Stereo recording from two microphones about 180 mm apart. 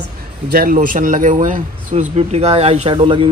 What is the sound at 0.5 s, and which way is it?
Speech, 50° right (ahead or behind).